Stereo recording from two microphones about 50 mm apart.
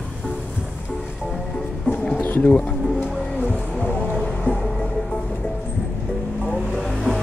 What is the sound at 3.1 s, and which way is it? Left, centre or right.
Music, centre.